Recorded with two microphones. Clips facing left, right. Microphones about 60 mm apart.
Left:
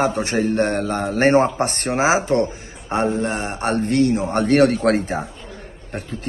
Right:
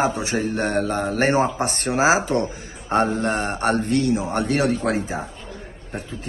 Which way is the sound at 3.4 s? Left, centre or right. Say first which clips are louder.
Even; left.